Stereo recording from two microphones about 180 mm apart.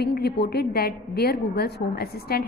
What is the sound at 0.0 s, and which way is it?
A woman's voice, 60° left (ahead or behind).